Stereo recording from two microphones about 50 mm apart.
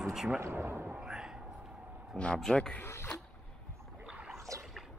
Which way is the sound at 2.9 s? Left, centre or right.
Left.